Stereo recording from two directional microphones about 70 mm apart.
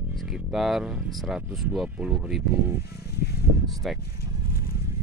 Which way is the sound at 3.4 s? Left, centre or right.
Right.